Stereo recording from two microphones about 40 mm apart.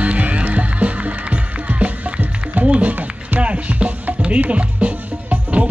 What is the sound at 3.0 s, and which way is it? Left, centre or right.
Music, right.